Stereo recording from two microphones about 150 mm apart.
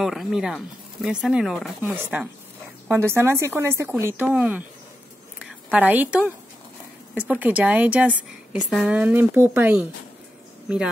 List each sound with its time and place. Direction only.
0.0 s speech: centre (ahead or behind)
5.7 s speech: 10° right (ahead or behind)